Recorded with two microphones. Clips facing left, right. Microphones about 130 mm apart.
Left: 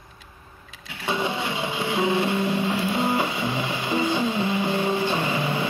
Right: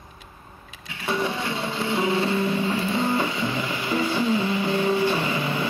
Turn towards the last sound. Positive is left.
turn(degrees=20)  # may be behind; listen again after turning